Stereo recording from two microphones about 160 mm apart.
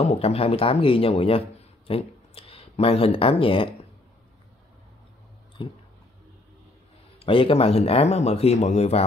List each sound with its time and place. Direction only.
0.0 s speech: 40° left (ahead or behind)
5.6 s speech: 30° left (ahead or behind)
7.2 s speech: 35° left (ahead or behind)